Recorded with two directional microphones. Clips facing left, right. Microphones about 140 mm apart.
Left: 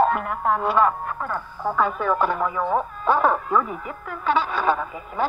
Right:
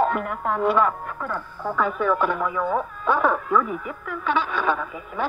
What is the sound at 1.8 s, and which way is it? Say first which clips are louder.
Speech: even; 35° left (ahead or behind).